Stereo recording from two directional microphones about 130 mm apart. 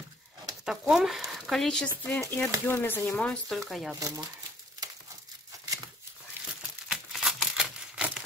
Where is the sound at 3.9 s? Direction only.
25° right (ahead or behind).